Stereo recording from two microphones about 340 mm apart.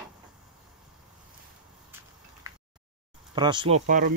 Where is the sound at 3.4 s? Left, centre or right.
Centre.